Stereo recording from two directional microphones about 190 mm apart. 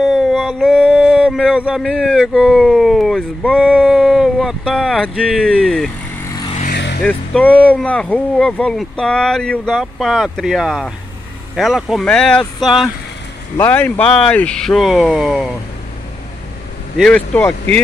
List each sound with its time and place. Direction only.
0.0 s a sound: centre (ahead or behind)
6.2 s vehicle: 20° left (ahead or behind)
6.7 s vehicle: 60° left (ahead or behind)
7.0 s speech: 5° left (ahead or behind)
17.0 s speech: 5° left (ahead or behind)